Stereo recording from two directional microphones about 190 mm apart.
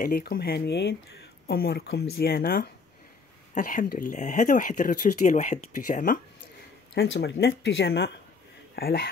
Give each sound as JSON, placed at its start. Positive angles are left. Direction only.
{"t": 0.0, "sound": "speech", "side_deg": 55}
{"t": 7.0, "sound": "speech", "side_deg": 65}